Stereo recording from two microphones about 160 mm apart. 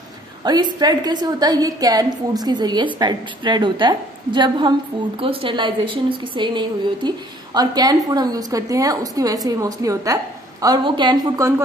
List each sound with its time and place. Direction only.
0.4 s a woman's voice: 25° right (ahead or behind)